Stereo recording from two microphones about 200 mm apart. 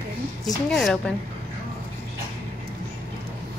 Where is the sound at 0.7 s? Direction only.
Centre (ahead or behind).